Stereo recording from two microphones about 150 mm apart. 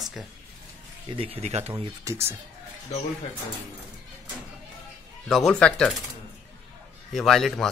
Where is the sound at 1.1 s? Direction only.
40° right (ahead or behind).